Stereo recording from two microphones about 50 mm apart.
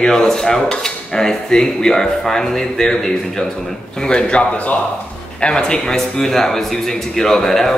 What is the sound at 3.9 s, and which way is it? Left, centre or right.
Speech, centre.